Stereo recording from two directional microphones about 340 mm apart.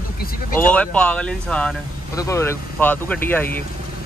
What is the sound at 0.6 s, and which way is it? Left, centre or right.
Speech, centre.